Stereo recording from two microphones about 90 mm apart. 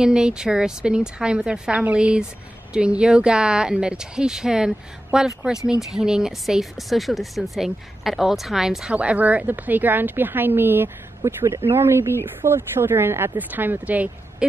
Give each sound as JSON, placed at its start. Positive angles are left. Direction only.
{"t": 0.0, "sound": "speech", "side_deg": -10}